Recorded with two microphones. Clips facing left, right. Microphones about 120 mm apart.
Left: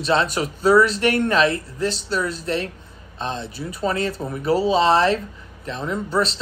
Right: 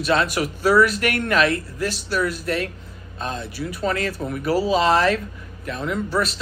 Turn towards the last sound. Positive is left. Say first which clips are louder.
# left 1 dB
turn(degrees=30)  # may be behind; listen again after turning